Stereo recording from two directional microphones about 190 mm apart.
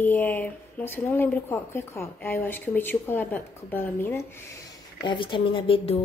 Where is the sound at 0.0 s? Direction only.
10° left (ahead or behind).